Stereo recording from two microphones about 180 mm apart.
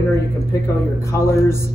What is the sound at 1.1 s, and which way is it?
Speech, 15° left (ahead or behind).